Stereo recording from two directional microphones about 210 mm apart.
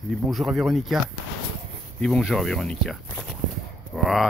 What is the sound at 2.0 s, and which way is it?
Speech, centre (ahead or behind).